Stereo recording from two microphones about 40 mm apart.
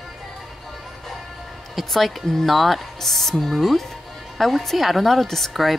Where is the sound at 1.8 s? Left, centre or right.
Centre.